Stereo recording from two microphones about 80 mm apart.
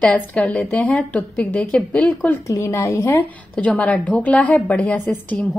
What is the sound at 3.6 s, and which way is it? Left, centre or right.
A woman's voice, centre.